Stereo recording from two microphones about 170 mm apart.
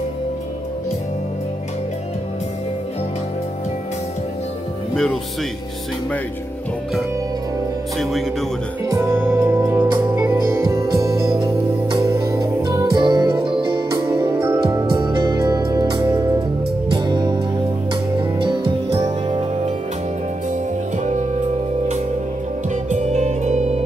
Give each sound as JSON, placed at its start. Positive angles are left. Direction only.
{"t": 4.9, "sound": "speech", "side_deg": 5}
{"t": 8.0, "sound": "speech", "side_deg": 0}
{"t": 8.8, "sound": "music", "side_deg": -15}
{"t": 9.9, "sound": "music", "side_deg": -25}
{"t": 10.2, "sound": "music", "side_deg": -15}
{"t": 22.8, "sound": "music", "side_deg": -40}